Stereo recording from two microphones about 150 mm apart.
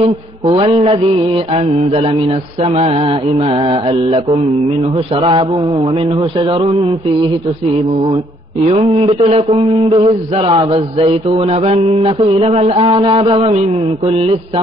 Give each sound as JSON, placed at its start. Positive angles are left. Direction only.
{"t": 0.0, "sound": "mantra", "side_deg": -45}
{"t": 8.6, "sound": "mantra", "side_deg": -45}
{"t": 12.8, "sound": "mantra", "side_deg": -30}